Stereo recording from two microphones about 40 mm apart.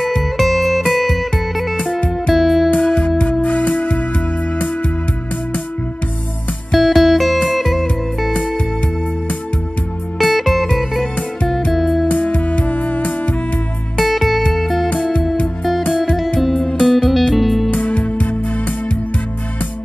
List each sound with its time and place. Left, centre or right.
0.0 s music: centre
2.7 s music: left
6.7 s music: centre
10.1 s music: centre
12.1 s music: left
13.9 s music: centre
15.8 s music: centre
17.0 s music: centre
17.6 s music: left